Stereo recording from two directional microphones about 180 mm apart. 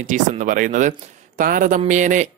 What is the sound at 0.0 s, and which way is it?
Speech, 45° right (ahead or behind).